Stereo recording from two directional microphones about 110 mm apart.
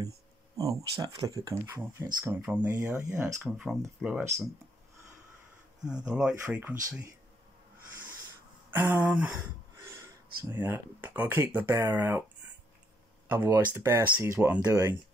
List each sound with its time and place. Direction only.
0.6 s speech: 35° right (ahead or behind); by 4.2 s 10° right (ahead or behind)
6.0 s speech: 10° right (ahead or behind)
6.4 s speech: 20° right (ahead or behind)
8.7 s speech: 15° right (ahead or behind)
13.3 s speech: 20° right (ahead or behind)